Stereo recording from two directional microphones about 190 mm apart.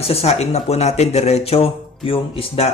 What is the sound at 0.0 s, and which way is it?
Speech, 30° left (ahead or behind).